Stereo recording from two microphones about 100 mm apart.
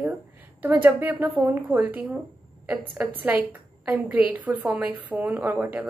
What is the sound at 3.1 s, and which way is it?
A woman's voice, 15° right (ahead or behind).